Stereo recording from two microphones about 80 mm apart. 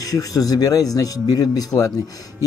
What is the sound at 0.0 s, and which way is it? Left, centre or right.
Speech, left.